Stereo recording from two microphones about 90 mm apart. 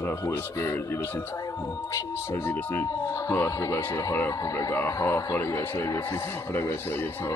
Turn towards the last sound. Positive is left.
turn(degrees=30)  # may be behind; listen again after turning